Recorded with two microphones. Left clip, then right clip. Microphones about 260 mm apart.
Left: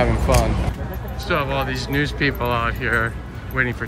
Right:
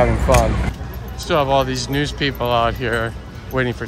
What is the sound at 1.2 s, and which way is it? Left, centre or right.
Speech, centre.